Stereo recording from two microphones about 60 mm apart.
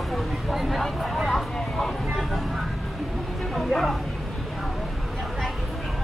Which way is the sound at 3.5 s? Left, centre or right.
Centre.